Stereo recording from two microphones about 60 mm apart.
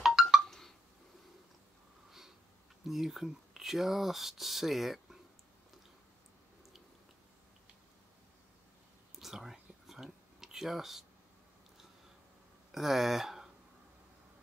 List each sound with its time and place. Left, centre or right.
0.0 s a sound: centre
0.5 s a sound: centre
2.0 s sniff: centre
2.9 s speech: centre
9.1 s whispering: centre
12.7 s speech: centre